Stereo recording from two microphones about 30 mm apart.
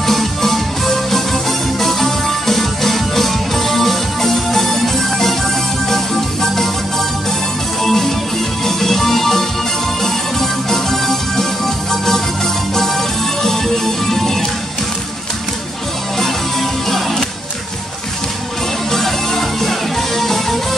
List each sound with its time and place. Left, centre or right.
0.0 s music: centre
16.9 s music: centre
18.9 s music: centre